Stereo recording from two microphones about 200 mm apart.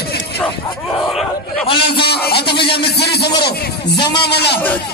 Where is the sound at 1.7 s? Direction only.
55° left (ahead or behind).